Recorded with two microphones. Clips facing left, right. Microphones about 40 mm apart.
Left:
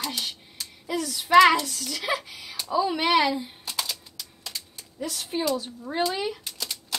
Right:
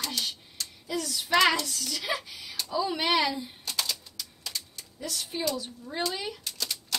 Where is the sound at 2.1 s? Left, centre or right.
Centre.